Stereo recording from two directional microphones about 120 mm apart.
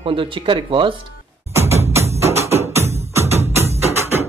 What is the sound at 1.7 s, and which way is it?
Music, 60° right (ahead or behind).